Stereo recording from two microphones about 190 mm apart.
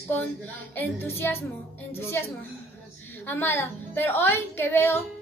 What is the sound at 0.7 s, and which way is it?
A woman's voice, 10° left (ahead or behind).